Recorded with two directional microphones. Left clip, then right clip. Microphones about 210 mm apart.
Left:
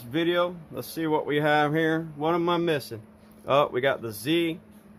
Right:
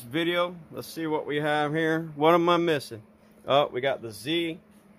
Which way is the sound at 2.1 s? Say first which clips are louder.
Right 7 dB; 30° right (ahead or behind).